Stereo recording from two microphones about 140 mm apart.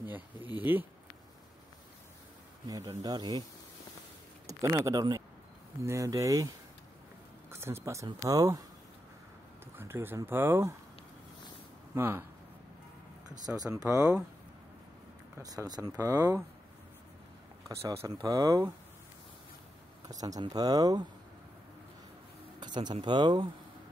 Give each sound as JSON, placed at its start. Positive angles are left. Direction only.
{"t": 0.7, "sound": "speech", "side_deg": -15}
{"t": 2.6, "sound": "speech", "side_deg": -25}
{"t": 4.5, "sound": "speech", "side_deg": -20}
{"t": 7.5, "sound": "speech", "side_deg": -20}
{"t": 9.8, "sound": "speech", "side_deg": -15}
{"t": 11.9, "sound": "speech", "side_deg": -15}
{"t": 13.8, "sound": "speech", "side_deg": -5}
{"t": 15.3, "sound": "speech", "side_deg": -25}
{"t": 17.6, "sound": "speech", "side_deg": -25}
{"t": 20.1, "sound": "speech", "side_deg": -25}
{"t": 22.6, "sound": "a sound", "side_deg": -30}
{"t": 23.0, "sound": "speech", "side_deg": -35}